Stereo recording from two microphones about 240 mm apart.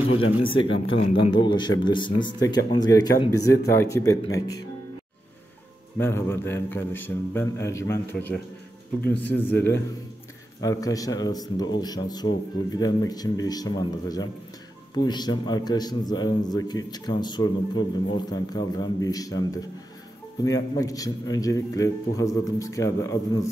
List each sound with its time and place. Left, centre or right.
0.9 s a man's voice: left
5.9 s a man's voice: centre